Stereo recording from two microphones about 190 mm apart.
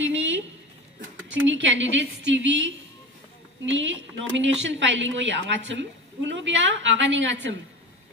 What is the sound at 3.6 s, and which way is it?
A woman's voice, 80° right.